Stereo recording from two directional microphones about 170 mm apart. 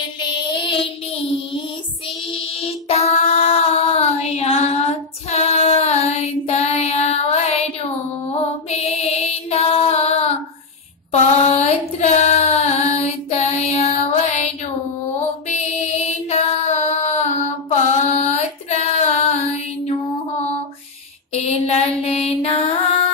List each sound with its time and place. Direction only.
0.6 s child singing: 30° left (ahead or behind)
8.3 s music: 40° left (ahead or behind)
11.1 s female singing: 40° left (ahead or behind)
15.4 s music: 40° left (ahead or behind)
17.6 s female singing: 40° left (ahead or behind)
21.3 s mantra: 40° left (ahead or behind)